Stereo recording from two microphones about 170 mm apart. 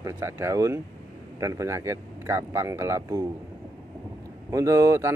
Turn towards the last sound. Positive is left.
turn(degrees=-15)  # may be behind; listen again after turning